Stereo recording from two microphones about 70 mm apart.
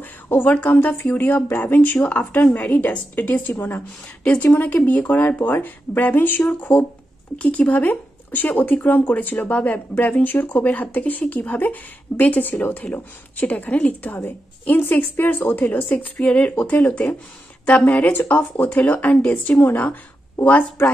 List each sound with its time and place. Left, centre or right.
0.0 s speech: left